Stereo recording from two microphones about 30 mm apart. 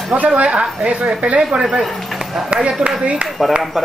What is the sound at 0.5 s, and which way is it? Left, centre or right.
Speech, right.